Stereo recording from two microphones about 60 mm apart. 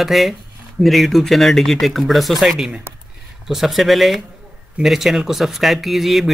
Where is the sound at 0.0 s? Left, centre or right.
Centre.